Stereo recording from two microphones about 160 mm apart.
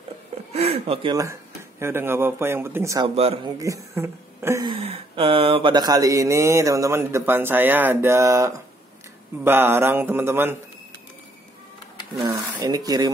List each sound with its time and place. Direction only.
0.5 s a sound: 40° right (ahead or behind)
1.1 s speech: 20° right (ahead or behind)
3.4 s mantra: 20° right (ahead or behind)
4.6 s mantra: 35° right (ahead or behind); by 8.6 s 20° right (ahead or behind)
9.4 s speech: 15° right (ahead or behind)
12.3 s speech: 20° right (ahead or behind)